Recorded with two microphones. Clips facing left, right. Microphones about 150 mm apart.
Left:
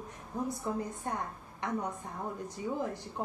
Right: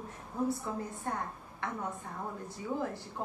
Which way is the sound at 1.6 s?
15° left (ahead or behind).